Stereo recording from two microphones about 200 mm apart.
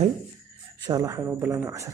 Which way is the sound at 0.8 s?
20° right (ahead or behind).